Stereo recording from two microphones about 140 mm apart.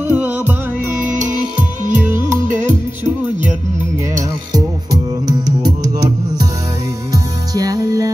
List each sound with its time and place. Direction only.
0.1 s music: 15° right (ahead or behind)
1.0 s music: 65° right (ahead or behind)
4.5 s music: 25° right (ahead or behind)